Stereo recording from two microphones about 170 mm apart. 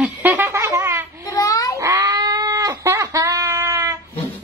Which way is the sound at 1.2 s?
20° left (ahead or behind).